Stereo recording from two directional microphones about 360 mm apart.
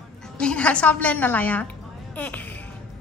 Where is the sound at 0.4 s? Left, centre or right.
Centre.